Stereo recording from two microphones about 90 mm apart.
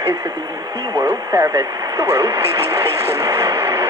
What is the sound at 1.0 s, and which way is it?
Speech, 30° right (ahead or behind).